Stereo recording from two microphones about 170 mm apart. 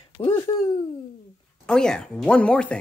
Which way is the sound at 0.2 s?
25° left (ahead or behind).